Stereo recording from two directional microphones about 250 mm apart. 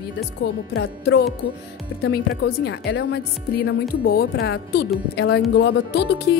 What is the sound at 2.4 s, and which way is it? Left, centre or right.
Speech, left.